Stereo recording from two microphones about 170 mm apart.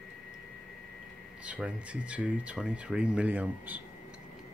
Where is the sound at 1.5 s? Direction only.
5° right (ahead or behind).